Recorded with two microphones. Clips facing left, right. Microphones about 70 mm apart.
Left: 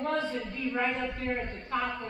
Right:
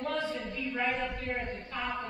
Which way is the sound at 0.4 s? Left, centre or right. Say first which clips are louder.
Left 3 dB; left.